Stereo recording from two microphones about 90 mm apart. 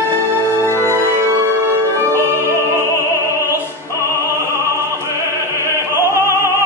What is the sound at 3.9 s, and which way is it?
Opera, 30° left (ahead or behind).